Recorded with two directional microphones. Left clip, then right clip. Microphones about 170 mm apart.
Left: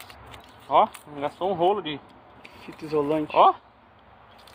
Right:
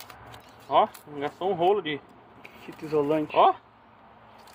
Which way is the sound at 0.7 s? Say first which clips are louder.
Left 2 dB; 35° left (ahead or behind).